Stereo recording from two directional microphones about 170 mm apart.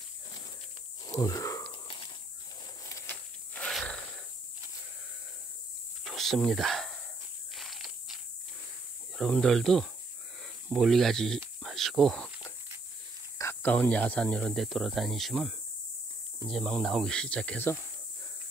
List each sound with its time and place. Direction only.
1.0 s wheeze: 20° left (ahead or behind)
1.7 s a sound: 30° left (ahead or behind)
2.8 s wild animals: 20° left (ahead or behind)
6.0 s a sound: centre (ahead or behind)
9.1 s speech: centre (ahead or behind)
13.4 s speech: 10° left (ahead or behind)